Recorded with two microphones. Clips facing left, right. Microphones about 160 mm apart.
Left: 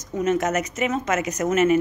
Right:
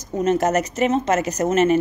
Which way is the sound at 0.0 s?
35° right (ahead or behind).